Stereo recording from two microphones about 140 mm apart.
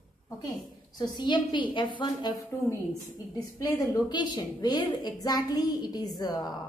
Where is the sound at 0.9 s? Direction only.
30° left (ahead or behind).